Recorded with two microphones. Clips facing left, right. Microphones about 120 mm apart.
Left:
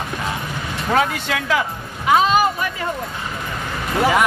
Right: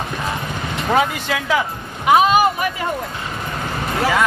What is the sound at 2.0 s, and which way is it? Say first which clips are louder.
Vehicle: right 2 dB; 15° right (ahead or behind).